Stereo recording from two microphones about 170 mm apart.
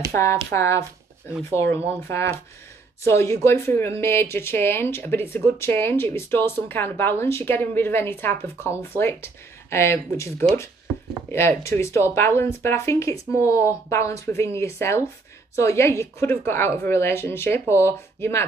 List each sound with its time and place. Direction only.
0.6 s speech: 15° left (ahead or behind)